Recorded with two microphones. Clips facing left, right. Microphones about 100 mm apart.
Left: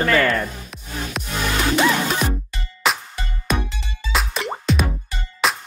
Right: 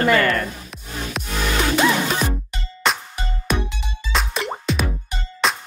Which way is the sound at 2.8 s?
5° left (ahead or behind).